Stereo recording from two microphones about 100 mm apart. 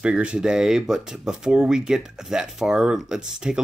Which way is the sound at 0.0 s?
10° right (ahead or behind).